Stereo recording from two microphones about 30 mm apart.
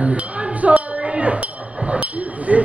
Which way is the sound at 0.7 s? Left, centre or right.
Right.